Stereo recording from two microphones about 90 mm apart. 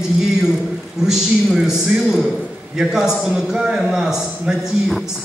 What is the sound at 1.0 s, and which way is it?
A man's voice, 5° right (ahead or behind).